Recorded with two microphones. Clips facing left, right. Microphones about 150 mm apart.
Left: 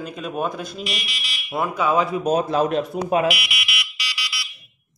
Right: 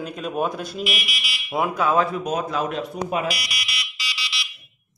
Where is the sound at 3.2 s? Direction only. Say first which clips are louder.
Left 5 dB; 35° right (ahead or behind); by 4.5 s 20° right (ahead or behind).